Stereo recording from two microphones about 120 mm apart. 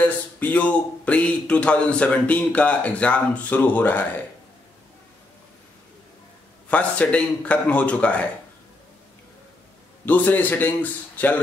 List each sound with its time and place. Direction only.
0.0 s speech: 15° left (ahead or behind)
6.7 s speech: 10° left (ahead or behind)
10.0 s speech: 15° left (ahead or behind)